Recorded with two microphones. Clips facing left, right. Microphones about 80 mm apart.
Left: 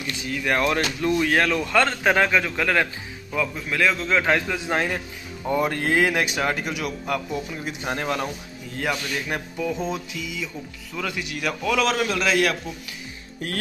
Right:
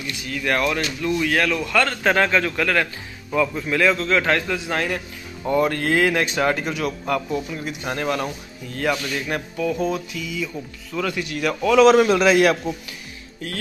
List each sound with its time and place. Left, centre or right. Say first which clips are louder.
0.2 s a man's voice: right 1 dB; centre
0.7 s a man's voice: left 1 dB; left
2.1 s speech: right 1 dB; centre
3.3 s a man's voice: right 4 dB; centre
4.1 s a man's voice: right 1 dB; centre
11.6 s a man's voice: right 10 dB; centre
12.0 s a man's voice: right 6 dB; right
13.4 s speech: left 1 dB; left